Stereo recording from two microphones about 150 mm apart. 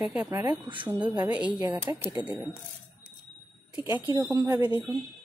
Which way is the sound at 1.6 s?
15° right (ahead or behind).